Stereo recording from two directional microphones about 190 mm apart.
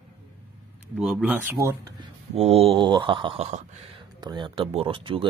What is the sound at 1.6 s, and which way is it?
Speech, 20° right (ahead or behind).